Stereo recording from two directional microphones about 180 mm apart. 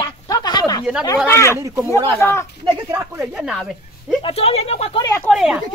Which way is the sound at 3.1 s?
5° right (ahead or behind).